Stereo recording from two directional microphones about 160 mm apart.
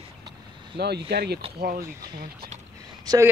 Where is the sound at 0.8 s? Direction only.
90° right.